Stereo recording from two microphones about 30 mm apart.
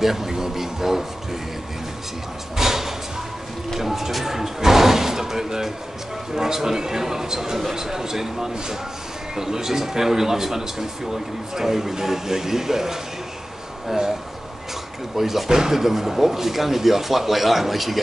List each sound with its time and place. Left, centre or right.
0.0 s a man's voice: centre
2.5 s speech: centre
15.1 s speech: centre